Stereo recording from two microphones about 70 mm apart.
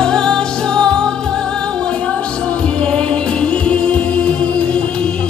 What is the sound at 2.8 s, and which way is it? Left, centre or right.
Music, centre.